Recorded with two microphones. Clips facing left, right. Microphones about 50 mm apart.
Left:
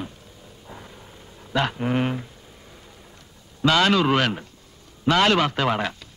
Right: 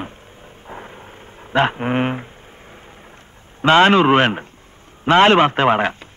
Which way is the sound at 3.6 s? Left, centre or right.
Right.